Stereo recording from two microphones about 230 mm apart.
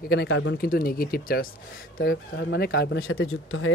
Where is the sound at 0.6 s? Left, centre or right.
Left.